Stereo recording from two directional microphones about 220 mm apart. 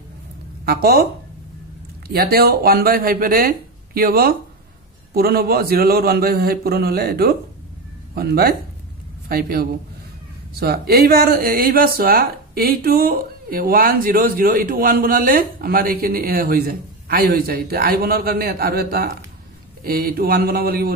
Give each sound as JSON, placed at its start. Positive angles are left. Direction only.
{"t": 0.7, "sound": "speech", "side_deg": -45}
{"t": 2.0, "sound": "speech", "side_deg": -45}